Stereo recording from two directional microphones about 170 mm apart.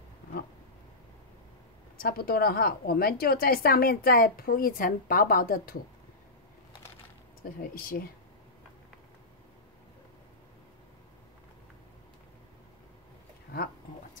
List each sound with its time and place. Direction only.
2.0 s a woman's voice: 65° left (ahead or behind)
7.7 s a woman's voice: 60° left (ahead or behind)